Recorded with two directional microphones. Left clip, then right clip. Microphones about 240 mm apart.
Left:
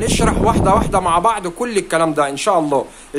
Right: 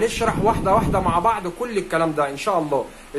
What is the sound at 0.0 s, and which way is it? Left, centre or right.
Speech, left.